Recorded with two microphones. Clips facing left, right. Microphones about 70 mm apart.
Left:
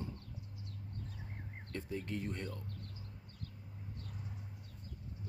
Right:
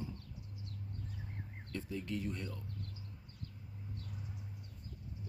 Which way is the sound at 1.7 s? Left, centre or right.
Left.